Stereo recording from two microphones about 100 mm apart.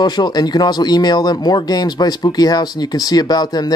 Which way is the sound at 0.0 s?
45° left (ahead or behind).